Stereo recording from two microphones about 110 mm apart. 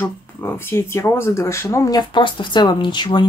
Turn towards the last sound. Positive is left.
turn(degrees=45)  # may be behind; listen again after turning